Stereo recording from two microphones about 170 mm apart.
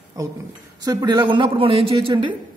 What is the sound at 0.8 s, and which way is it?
A woman's voice, 20° right (ahead or behind).